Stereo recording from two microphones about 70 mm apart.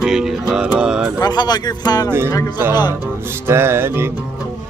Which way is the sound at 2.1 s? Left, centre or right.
Right.